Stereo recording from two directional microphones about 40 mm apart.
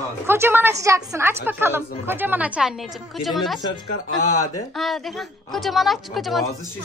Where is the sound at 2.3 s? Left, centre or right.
Right.